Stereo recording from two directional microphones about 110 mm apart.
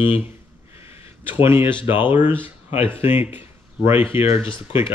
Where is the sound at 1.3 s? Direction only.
20° right (ahead or behind).